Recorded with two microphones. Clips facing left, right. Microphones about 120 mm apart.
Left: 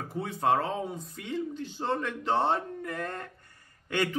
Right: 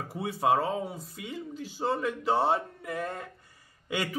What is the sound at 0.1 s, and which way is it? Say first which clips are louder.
Speech: right 1 dB; 10° right (ahead or behind).